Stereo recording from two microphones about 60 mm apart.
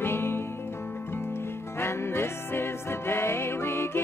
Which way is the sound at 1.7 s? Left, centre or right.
Left.